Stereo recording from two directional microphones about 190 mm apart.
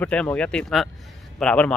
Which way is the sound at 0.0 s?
5° left (ahead or behind).